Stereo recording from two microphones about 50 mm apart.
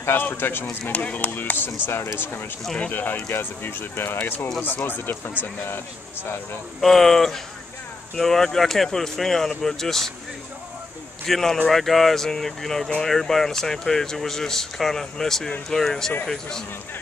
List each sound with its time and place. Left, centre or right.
0.0 s speech: left
0.9 s speech: left
1.9 s speech: left
2.8 s speech: left
6.8 s speech: centre
11.2 s speech: centre